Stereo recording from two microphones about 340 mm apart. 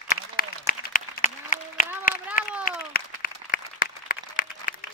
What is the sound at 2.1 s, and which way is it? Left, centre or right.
Run, left.